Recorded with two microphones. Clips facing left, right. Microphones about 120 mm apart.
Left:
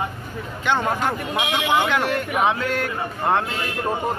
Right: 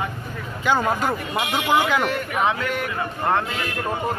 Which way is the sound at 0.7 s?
5° right (ahead or behind).